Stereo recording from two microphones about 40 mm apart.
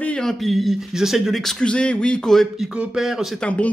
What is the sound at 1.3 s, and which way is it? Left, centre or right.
Speech, centre.